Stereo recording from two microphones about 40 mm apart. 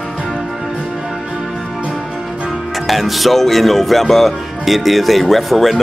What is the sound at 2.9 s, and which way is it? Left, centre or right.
Speech, centre.